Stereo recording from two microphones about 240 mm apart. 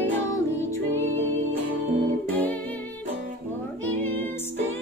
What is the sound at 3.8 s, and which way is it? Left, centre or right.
Music, centre.